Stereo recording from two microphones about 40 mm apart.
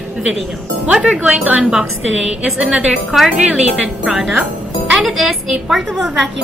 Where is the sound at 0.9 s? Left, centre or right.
Centre.